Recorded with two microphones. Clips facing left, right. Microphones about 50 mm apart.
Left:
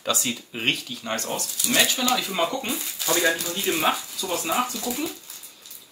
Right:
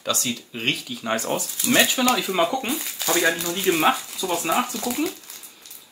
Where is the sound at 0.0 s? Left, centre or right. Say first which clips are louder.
Even; centre.